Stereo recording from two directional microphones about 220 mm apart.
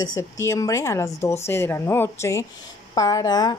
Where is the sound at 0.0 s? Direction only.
15° left (ahead or behind).